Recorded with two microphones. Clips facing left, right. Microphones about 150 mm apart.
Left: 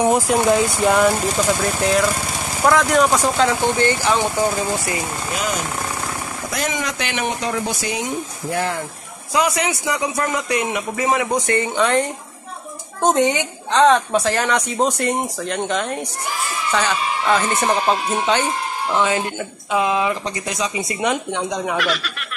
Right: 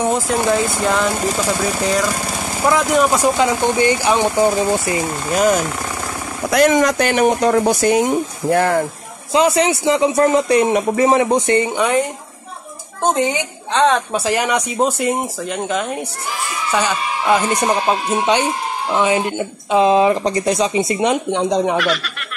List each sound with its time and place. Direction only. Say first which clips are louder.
0.0 s speech: left 1 dB; 10° left (ahead or behind)
1.6 s speech: even; centre (ahead or behind); by 5.0 s 20° right (ahead or behind)
5.3 s speech: right 10 dB; 45° right (ahead or behind)
6.5 s speech: right 12 dB; 65° right (ahead or behind)
6.8 s speech: right 10 dB; 45° right (ahead or behind)
9.3 s speech: right 5 dB; 25° right (ahead or behind)
13.0 s speech: left 1 dB; centre (ahead or behind)
14.2 s speech: right 2 dB; 10° right (ahead or behind); by 21.7 s 30° right (ahead or behind)
21.7 s speech: right 3 dB; centre (ahead or behind)